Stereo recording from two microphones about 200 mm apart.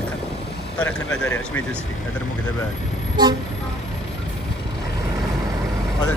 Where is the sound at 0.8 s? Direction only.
10° left (ahead or behind).